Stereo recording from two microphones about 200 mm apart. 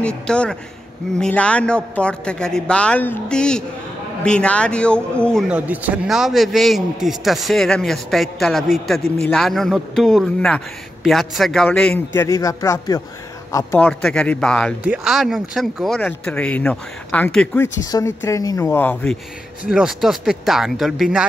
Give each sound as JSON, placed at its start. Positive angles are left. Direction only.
{"t": 0.0, "sound": "a man's voice", "side_deg": 5}
{"t": 5.5, "sound": "a man's voice", "side_deg": -5}
{"t": 12.2, "sound": "a man's voice", "side_deg": 15}
{"t": 19.7, "sound": "a man's voice", "side_deg": 0}